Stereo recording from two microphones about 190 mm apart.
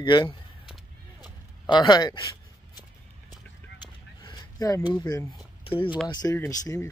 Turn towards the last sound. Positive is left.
turn(degrees=20)  # may be behind; listen again after turning